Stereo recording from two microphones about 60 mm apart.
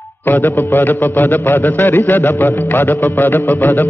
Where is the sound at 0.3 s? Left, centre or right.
Left.